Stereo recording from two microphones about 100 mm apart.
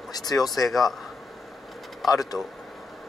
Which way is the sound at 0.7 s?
Centre (ahead or behind).